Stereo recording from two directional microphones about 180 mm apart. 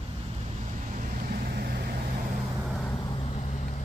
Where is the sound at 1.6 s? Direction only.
55° right (ahead or behind).